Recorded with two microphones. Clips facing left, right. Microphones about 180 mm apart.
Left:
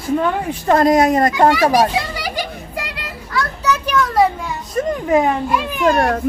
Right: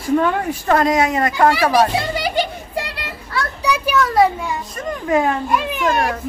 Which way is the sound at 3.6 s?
10° right (ahead or behind).